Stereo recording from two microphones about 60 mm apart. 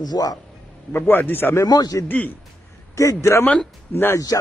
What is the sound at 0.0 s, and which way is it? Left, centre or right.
Speech, left.